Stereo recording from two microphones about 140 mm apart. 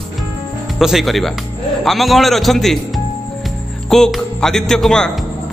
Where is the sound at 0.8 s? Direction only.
Centre (ahead or behind).